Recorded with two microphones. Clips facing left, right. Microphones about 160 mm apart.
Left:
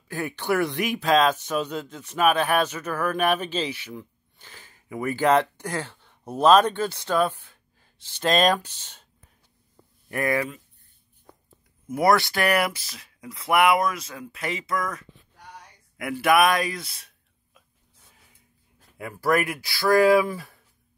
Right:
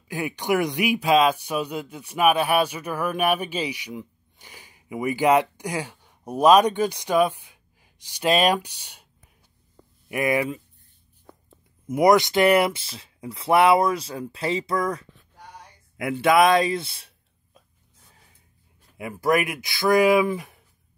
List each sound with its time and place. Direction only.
0.1 s speech: 15° right (ahead or behind)
10.0 s speech: 15° right (ahead or behind)
11.9 s speech: 20° right (ahead or behind)
18.9 s speech: 20° right (ahead or behind)